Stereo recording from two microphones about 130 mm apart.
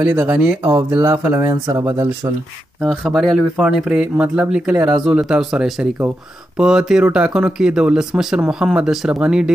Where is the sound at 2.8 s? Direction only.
Centre (ahead or behind).